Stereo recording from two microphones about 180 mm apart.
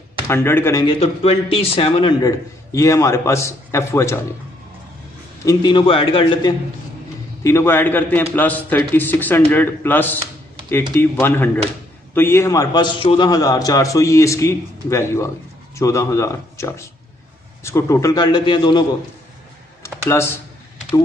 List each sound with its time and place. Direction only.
0.3 s a man's voice: 15° left (ahead or behind)
0.8 s a man's voice: 35° left (ahead or behind); by 4.2 s 15° left (ahead or behind)
5.4 s a man's voice: 20° left (ahead or behind)
7.4 s a man's voice: 15° left (ahead or behind)
20.1 s a man's voice: 15° left (ahead or behind)